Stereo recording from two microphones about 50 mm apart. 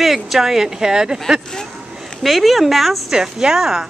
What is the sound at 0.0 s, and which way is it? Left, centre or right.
Speech, centre.